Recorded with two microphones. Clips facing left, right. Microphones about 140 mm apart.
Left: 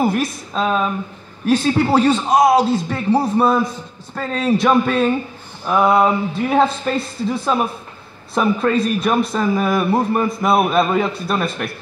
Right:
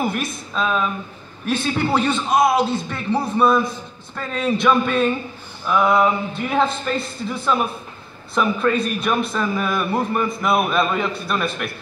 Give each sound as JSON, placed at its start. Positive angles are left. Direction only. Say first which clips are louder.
{"t": 0.0, "sound": "a man's voice", "louder": "left 5 dB", "side_deg": 35}